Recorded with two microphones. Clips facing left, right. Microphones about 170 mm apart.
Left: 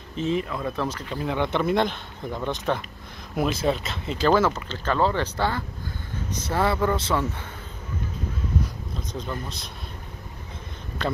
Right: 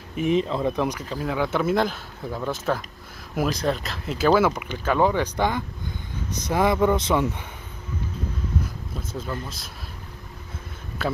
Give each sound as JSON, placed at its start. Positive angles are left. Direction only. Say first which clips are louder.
{"t": 0.1, "sound": "speech", "louder": "right 4 dB", "side_deg": -15}
{"t": 1.1, "sound": "speech", "louder": "left 1 dB", "side_deg": 0}
{"t": 9.1, "sound": "speech", "louder": "right 1 dB", "side_deg": -5}
{"t": 11.0, "sound": "speech", "louder": "right 1 dB", "side_deg": -5}